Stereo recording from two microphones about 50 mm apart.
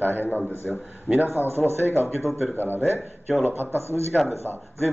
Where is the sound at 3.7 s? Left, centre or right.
Right.